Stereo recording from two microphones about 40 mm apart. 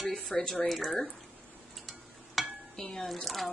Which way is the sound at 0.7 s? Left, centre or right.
Centre.